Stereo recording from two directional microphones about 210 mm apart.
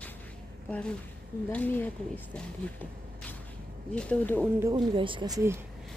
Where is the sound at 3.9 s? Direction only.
5° left (ahead or behind).